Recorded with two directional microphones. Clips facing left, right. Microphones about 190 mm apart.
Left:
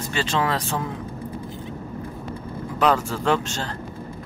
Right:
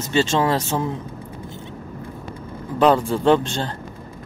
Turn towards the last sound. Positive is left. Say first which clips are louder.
# right 6 dB
turn(degrees=-30)  # may be behind; listen again after turning